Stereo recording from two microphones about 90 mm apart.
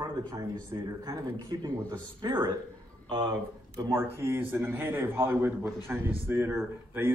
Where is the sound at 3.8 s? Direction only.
30° right (ahead or behind).